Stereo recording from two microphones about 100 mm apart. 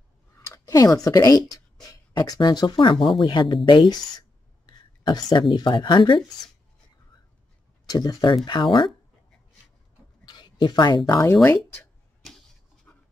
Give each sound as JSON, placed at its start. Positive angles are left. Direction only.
{"t": 0.4, "sound": "speech", "side_deg": 35}
{"t": 4.6, "sound": "a sound", "side_deg": 45}
{"t": 5.5, "sound": "speech", "side_deg": 50}
{"t": 7.9, "sound": "speech", "side_deg": 40}
{"t": 10.2, "sound": "a sound", "side_deg": 45}
{"t": 12.9, "sound": "dog", "side_deg": 15}